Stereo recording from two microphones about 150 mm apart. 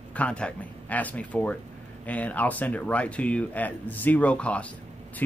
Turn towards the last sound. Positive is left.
turn(degrees=10)  # may be behind; listen again after turning